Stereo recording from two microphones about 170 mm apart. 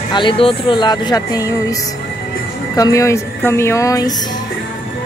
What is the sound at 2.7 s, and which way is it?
Speech, 20° left (ahead or behind).